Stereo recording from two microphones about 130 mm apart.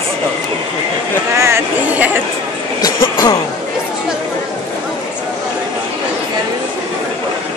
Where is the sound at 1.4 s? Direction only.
15° right (ahead or behind).